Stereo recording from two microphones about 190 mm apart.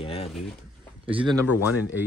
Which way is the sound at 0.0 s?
30° left (ahead or behind).